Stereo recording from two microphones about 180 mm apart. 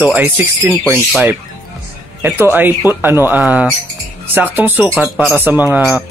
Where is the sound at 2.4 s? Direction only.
10° right (ahead or behind).